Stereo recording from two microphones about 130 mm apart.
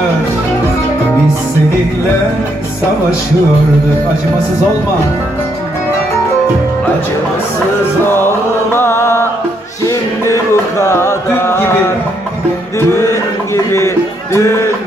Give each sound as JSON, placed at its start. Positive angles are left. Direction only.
{"t": 8.1, "sound": "music", "side_deg": 15}
{"t": 13.7, "sound": "speech", "side_deg": 20}